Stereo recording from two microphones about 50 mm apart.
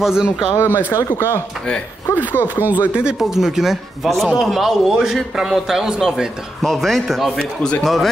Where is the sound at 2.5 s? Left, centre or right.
Right.